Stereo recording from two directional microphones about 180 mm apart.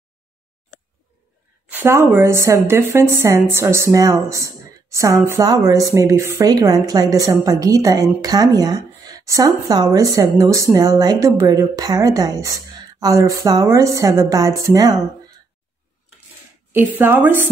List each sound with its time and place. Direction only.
1.7 s a woman's voice: 15° right (ahead or behind)
16.7 s a woman's voice: 10° right (ahead or behind)